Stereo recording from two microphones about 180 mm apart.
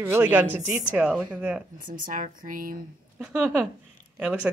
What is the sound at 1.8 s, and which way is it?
Speech, 50° right (ahead or behind).